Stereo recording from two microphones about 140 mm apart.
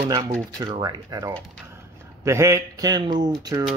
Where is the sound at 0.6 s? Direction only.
30° right (ahead or behind).